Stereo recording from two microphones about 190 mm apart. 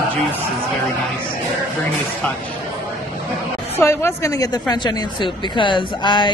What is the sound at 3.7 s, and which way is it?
A woman's voice, 15° left (ahead or behind).